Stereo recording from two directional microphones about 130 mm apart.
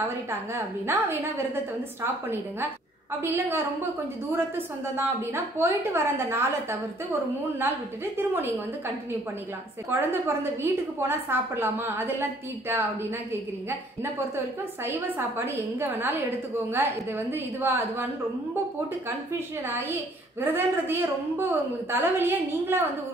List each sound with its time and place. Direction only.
0.3 s a woman's voice: 20° right (ahead or behind)
3.2 s a woman's voice: 20° right (ahead or behind)
14.9 s a woman's voice: 20° right (ahead or behind)
20.3 s a woman's voice: 15° right (ahead or behind)